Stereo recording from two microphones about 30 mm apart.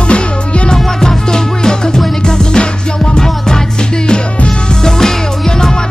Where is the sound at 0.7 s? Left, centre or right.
Left.